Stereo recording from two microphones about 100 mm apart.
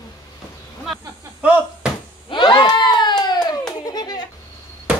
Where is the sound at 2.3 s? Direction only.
50° left (ahead or behind).